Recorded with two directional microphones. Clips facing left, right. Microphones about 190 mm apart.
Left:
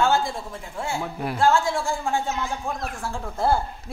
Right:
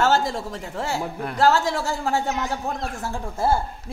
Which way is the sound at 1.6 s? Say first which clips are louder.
Right 1 dB; 75° right (ahead or behind).